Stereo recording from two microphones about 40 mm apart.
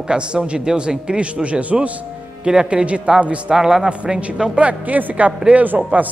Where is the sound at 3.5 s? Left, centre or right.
Centre.